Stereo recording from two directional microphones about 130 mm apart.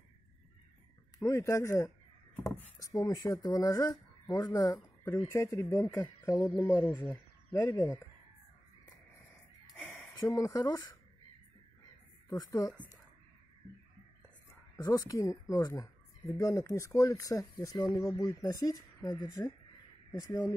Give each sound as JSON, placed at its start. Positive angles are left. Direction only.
{"t": 1.2, "sound": "speech", "side_deg": 25}
{"t": 6.8, "sound": "speech", "side_deg": 10}
{"t": 7.5, "sound": "speech", "side_deg": 25}
{"t": 9.8, "sound": "a sound", "side_deg": 15}
{"t": 12.3, "sound": "speech", "side_deg": 25}
{"t": 14.8, "sound": "speech", "side_deg": 25}